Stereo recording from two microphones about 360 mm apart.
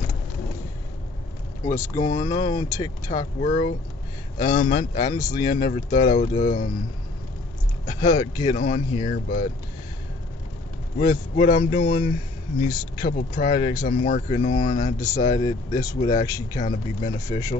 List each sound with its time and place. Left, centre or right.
2.0 s speech: centre
7.8 s speech: centre
11.0 s speech: left
15.0 s speech: centre